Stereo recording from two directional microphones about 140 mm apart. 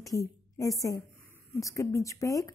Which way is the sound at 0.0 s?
25° left (ahead or behind).